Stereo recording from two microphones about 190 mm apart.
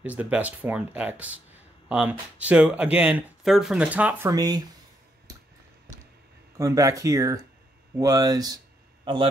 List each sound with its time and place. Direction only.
0.0 s speech: 10° right (ahead or behind)
6.6 s a man's voice: 15° right (ahead or behind)